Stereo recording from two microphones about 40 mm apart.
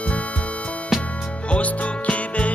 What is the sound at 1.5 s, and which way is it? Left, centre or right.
Music, left.